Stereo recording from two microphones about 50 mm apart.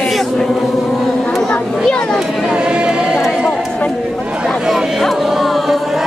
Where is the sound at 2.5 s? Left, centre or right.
Right.